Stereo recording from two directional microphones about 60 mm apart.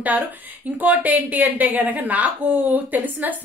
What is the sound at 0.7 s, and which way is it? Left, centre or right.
A woman's voice, right.